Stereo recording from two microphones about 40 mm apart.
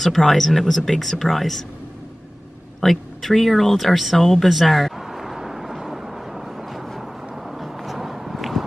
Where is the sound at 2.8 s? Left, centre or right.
Centre.